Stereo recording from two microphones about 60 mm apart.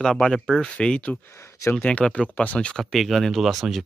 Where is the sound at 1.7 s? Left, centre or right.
Centre.